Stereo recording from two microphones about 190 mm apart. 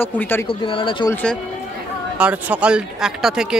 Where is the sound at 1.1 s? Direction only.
5° left (ahead or behind).